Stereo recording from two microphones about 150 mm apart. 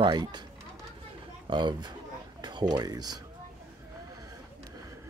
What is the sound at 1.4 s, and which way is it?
Speech, 30° right (ahead or behind).